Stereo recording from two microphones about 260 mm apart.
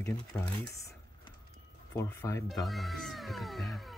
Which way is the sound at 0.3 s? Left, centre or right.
Centre.